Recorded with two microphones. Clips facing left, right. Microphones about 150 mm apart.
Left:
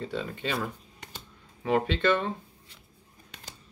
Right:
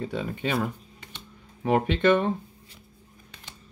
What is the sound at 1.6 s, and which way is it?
Speech, 15° right (ahead or behind).